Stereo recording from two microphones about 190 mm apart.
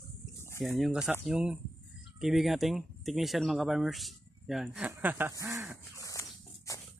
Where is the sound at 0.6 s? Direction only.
Centre (ahead or behind).